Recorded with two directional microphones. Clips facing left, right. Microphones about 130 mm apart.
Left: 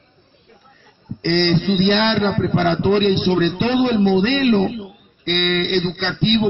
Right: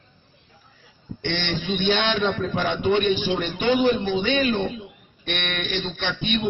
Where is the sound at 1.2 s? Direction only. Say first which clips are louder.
Left 10 dB; 50° left (ahead or behind).